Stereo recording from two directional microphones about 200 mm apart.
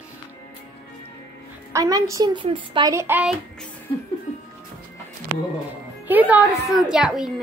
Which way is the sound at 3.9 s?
25° left (ahead or behind).